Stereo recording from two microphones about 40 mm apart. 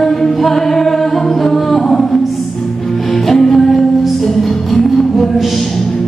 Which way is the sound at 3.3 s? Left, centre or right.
Centre.